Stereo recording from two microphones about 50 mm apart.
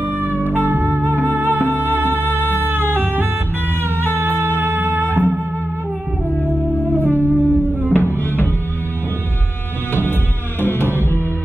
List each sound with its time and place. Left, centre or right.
0.5 s music: right
6.4 s music: right
7.9 s music: left
10.6 s music: left